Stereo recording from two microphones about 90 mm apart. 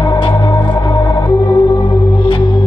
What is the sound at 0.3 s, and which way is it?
Music, 35° left (ahead or behind).